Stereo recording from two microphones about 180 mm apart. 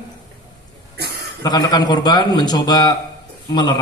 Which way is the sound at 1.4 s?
20° left (ahead or behind).